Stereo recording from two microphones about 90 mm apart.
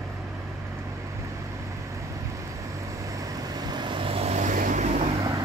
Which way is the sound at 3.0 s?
40° right (ahead or behind).